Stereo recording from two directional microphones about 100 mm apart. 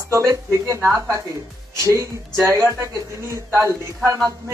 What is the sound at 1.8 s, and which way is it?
Speech, 30° right (ahead or behind).